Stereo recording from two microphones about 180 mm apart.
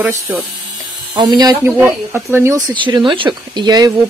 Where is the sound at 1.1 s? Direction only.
20° right (ahead or behind).